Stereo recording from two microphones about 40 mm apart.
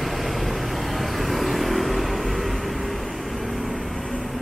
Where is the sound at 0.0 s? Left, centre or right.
Centre.